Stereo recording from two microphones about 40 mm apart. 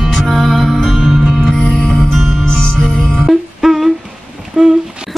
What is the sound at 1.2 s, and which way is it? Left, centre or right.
Music, centre.